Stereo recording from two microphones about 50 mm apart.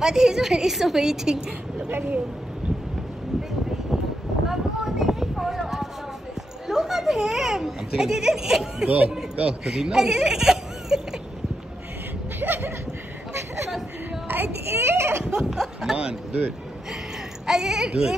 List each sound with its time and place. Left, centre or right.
0.0 s a child's voice: centre
1.9 s speech: right
4.5 s a sound: centre
6.7 s a child's voice: centre
8.8 s speech: right
9.7 s speech: centre
12.4 s a sound: right
14.2 s a child's voice: right
14.8 s a sound: right
15.2 s speech: centre
17.5 s a child's voice: centre